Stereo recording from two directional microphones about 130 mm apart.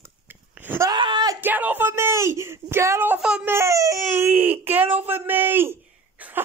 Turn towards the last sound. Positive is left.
turn(degrees=-15)  # may be behind; listen again after turning